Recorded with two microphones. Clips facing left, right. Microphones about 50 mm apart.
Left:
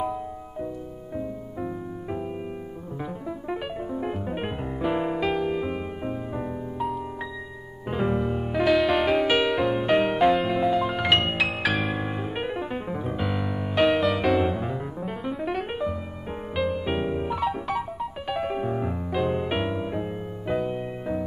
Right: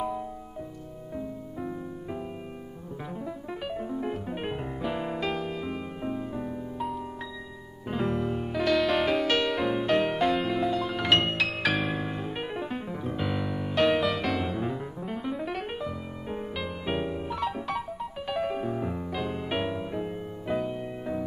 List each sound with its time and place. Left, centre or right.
1.1 s music: centre
3.4 s music: centre
7.9 s music: centre
12.0 s music: centre
17.1 s piano: left
17.4 s music: centre